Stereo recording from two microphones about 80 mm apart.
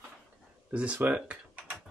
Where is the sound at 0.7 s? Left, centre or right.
Centre.